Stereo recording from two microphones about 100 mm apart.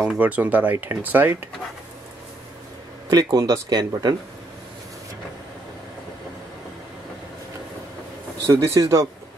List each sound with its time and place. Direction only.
0.2 s speech: 15° right (ahead or behind)
3.1 s speech: 40° right (ahead or behind)
8.5 s speech: 30° right (ahead or behind)